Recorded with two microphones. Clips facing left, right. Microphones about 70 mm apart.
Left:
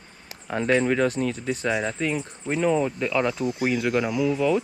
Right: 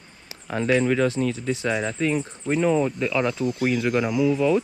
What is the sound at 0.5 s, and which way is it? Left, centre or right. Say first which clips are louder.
Speech: right 1 dB; left.